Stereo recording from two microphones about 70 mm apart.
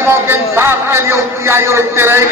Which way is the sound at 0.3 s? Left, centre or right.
Right.